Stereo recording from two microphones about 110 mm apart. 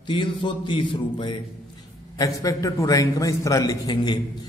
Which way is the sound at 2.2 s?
30° left (ahead or behind).